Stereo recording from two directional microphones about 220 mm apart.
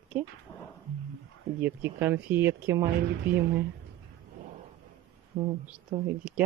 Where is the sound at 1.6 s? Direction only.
10° right (ahead or behind).